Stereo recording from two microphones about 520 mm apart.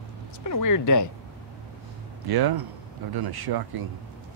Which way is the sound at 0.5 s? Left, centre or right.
Left.